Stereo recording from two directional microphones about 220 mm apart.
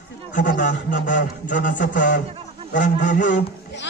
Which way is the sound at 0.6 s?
35° left (ahead or behind).